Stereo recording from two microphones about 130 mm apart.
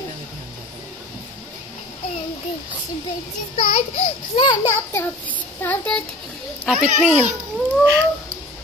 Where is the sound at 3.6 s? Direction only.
55° left (ahead or behind).